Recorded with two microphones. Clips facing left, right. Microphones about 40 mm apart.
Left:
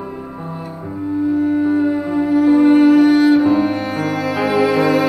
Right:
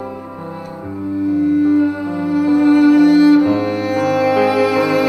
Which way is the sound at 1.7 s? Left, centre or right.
Centre.